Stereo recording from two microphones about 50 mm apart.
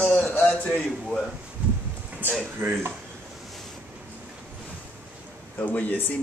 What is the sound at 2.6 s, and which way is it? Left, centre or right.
Speech, right.